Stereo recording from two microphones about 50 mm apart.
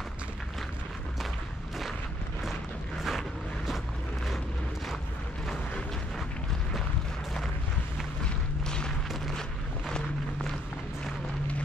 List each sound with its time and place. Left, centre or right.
3.0 s vehicle: centre
8.6 s boom: centre
9.8 s a sound: centre